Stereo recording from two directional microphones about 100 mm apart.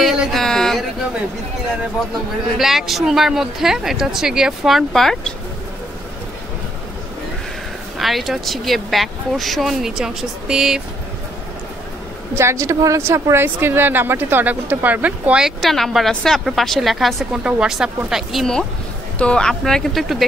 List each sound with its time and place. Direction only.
0.0 s a sound: 5° right (ahead or behind)
2.5 s speech: centre (ahead or behind)
8.0 s speech: centre (ahead or behind)
12.4 s speech: 30° right (ahead or behind); by 20.2 s centre (ahead or behind)